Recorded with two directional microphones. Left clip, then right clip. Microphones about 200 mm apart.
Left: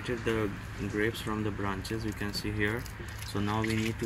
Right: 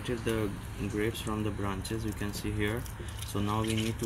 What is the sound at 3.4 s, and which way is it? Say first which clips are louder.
Speech: left 1 dB; 15° left (ahead or behind).